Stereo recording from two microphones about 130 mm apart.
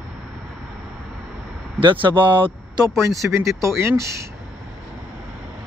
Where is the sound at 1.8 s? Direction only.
40° right (ahead or behind).